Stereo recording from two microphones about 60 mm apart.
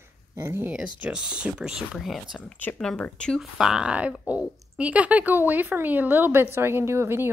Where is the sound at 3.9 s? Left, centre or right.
Right.